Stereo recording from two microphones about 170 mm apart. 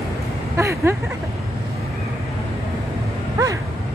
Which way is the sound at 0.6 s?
15° right (ahead or behind).